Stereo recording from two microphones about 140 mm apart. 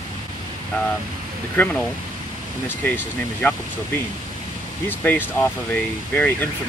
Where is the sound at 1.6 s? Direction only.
10° left (ahead or behind).